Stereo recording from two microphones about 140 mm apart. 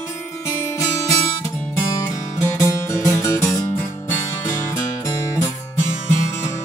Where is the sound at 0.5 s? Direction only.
20° left (ahead or behind).